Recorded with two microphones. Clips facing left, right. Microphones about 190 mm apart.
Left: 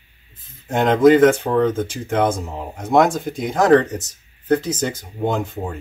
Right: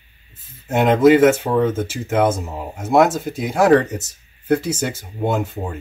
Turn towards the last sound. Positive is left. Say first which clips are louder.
# right 1 dB
turn(degrees=-5)  # may be behind; listen again after turning